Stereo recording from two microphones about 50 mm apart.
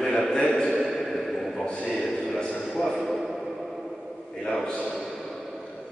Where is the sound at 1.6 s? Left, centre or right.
Centre.